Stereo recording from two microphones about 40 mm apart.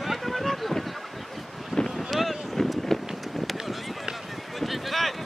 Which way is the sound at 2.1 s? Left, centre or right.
Centre.